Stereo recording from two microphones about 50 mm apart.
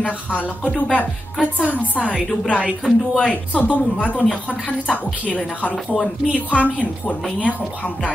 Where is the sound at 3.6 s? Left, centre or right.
Left.